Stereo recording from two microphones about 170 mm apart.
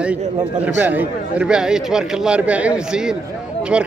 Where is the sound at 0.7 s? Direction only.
10° right (ahead or behind).